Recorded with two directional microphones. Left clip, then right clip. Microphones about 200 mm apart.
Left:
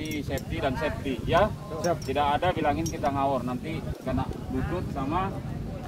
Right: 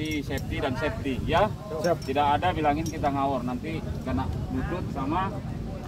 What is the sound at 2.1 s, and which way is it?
Speech, 25° left (ahead or behind).